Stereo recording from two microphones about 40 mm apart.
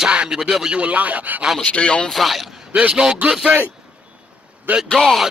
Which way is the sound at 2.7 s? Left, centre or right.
Right.